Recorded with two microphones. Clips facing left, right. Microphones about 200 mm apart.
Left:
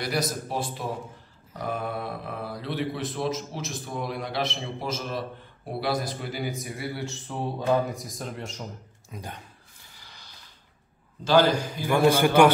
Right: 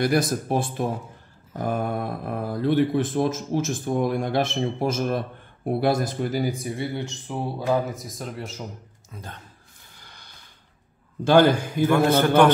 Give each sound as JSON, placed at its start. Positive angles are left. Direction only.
{"t": 0.0, "sound": "a man's voice", "side_deg": -50}
{"t": 9.1, "sound": "a man's voice", "side_deg": 15}
{"t": 10.0, "sound": "a sound", "side_deg": -55}
{"t": 11.2, "sound": "a man's voice", "side_deg": -55}
{"t": 11.8, "sound": "a man's voice", "side_deg": 10}